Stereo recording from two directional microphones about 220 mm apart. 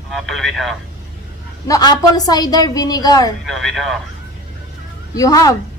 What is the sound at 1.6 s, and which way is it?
A woman's voice, 15° left (ahead or behind).